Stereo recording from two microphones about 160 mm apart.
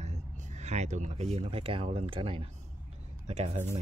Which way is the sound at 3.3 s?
45° right (ahead or behind).